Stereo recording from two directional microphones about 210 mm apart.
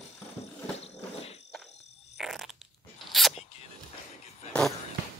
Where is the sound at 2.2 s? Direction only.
Centre (ahead or behind).